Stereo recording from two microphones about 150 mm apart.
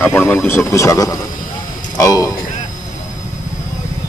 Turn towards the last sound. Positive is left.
turn(degrees=25)  # may be behind; listen again after turning